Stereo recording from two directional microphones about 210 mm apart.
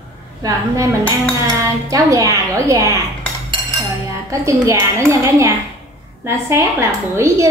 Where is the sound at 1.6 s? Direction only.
15° right (ahead or behind).